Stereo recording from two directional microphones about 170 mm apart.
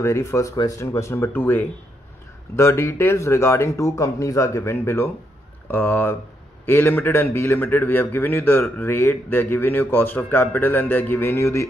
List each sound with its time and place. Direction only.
0.0 s a man's voice: 15° left (ahead or behind)